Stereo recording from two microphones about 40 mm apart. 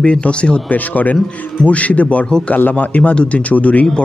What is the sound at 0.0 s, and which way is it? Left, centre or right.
Speech, left.